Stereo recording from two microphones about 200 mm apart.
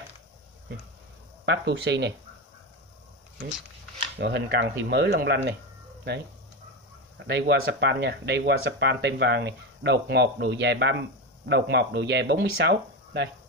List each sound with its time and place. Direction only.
1.4 s speech: 60° right (ahead or behind)
4.2 s speech: 55° right (ahead or behind)
7.2 s speech: 55° right (ahead or behind)